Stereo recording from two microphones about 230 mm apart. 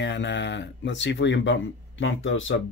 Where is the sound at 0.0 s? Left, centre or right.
Left.